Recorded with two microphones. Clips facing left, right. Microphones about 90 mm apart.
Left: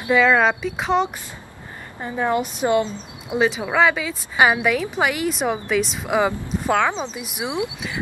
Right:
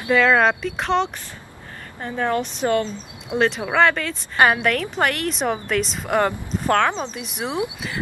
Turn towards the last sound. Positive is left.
turn(degrees=5)  # may be behind; listen again after turning